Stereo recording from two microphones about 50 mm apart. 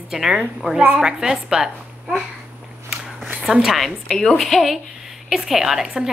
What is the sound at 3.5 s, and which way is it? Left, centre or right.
Speech, centre.